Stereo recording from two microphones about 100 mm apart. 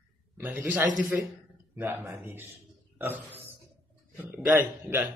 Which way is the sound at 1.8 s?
30° right (ahead or behind).